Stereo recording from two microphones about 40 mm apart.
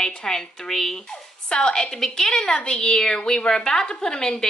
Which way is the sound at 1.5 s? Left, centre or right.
Left.